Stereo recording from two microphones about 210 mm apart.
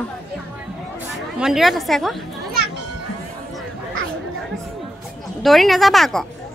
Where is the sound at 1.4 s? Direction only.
Centre (ahead or behind).